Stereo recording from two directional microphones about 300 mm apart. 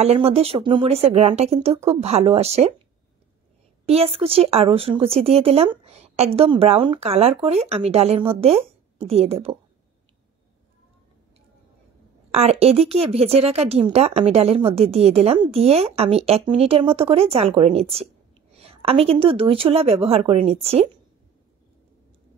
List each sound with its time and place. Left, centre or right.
0.0 s speech: right
3.8 s speech: centre
12.3 s speech: right